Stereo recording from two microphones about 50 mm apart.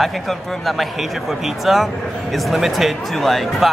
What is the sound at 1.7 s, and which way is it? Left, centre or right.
Speech, centre.